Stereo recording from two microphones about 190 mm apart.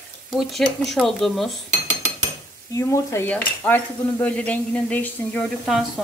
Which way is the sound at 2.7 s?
15° left (ahead or behind).